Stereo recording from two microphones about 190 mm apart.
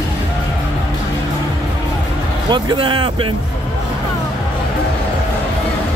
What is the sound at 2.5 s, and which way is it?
Speech, 25° right (ahead or behind).